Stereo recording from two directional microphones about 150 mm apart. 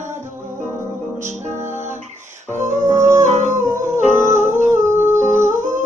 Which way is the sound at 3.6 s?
20° right (ahead or behind).